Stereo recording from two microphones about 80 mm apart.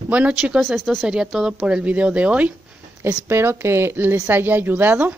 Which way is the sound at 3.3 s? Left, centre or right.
Right.